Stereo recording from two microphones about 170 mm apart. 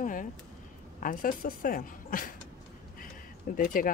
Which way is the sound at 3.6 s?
55° left (ahead or behind).